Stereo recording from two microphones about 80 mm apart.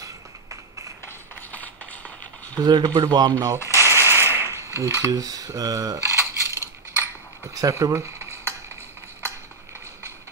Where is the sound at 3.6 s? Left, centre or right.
Left.